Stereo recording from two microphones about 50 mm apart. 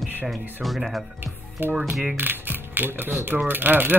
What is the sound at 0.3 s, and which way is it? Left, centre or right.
Speech, centre.